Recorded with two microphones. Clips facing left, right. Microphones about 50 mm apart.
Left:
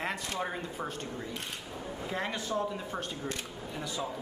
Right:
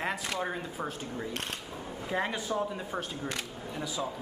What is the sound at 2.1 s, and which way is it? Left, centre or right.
Speech, centre.